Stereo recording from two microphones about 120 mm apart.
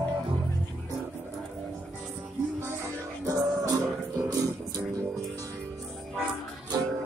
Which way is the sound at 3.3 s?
30° right (ahead or behind).